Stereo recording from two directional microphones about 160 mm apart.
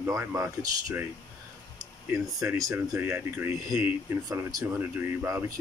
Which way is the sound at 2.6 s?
20° right (ahead or behind).